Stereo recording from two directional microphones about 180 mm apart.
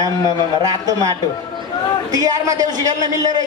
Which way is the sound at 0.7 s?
20° right (ahead or behind).